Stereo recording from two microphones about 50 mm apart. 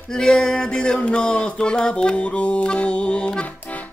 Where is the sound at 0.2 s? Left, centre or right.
Centre.